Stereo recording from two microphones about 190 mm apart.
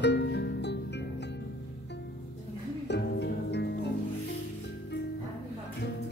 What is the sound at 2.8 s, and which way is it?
Music, 65° left (ahead or behind).